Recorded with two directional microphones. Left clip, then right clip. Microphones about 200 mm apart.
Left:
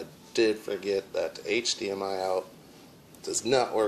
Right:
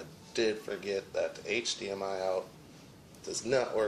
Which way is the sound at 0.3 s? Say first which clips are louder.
Left 6 dB; 25° left (ahead or behind).